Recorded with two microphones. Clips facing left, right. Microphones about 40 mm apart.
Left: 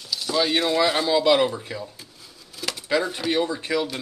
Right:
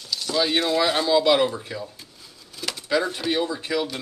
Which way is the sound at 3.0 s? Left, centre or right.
Centre.